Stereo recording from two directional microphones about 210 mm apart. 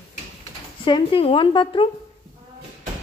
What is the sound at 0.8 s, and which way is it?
Speech, 25° left (ahead or behind).